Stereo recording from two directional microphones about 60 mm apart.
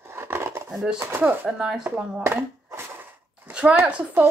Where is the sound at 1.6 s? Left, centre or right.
Centre.